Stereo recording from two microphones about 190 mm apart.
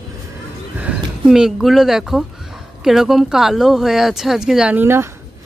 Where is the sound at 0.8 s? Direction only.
5° right (ahead or behind).